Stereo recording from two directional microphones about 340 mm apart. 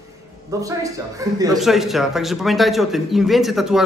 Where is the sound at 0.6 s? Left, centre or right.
Centre.